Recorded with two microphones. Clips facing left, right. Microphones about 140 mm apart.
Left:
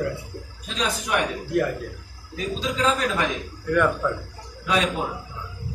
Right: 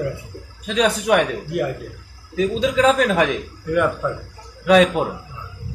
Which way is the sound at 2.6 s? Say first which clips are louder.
Right 7 dB; 90° right.